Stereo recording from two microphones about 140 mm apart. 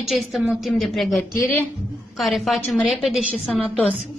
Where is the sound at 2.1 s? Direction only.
Centre (ahead or behind).